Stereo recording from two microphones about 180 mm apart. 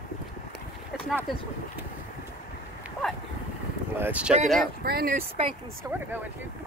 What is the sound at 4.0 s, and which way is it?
Speech, 5° right (ahead or behind).